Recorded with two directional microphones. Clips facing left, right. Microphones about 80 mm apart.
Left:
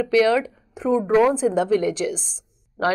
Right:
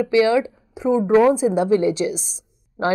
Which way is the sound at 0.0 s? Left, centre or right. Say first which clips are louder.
Right 1 dB; centre.